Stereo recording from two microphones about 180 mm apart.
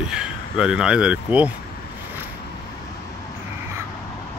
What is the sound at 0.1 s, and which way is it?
Speech, 5° right (ahead or behind).